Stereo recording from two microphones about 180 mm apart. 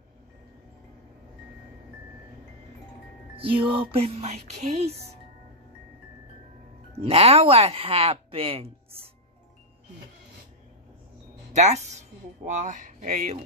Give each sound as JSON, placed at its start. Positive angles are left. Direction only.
{"t": 3.3, "sound": "speech", "side_deg": -30}
{"t": 6.9, "sound": "speech", "side_deg": -35}
{"t": 11.5, "sound": "speech", "side_deg": -40}